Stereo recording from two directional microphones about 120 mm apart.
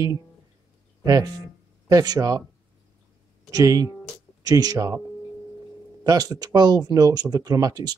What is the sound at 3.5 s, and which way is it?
Speech, 30° right (ahead or behind).